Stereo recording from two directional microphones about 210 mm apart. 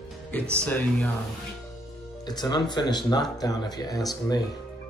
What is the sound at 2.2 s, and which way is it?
Speech, 20° left (ahead or behind).